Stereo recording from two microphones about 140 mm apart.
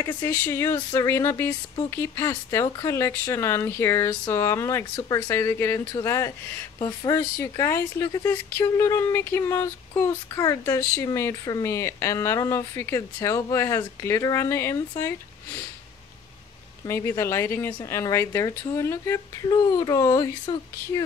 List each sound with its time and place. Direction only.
0.0 s speech: 15° left (ahead or behind)
4.9 s speech: 30° left (ahead or behind)
5.3 s speech: 15° left (ahead or behind)
16.8 s speech: 20° left (ahead or behind)